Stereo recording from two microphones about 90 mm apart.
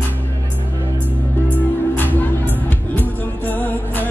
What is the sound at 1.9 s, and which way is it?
Music, 20° left (ahead or behind).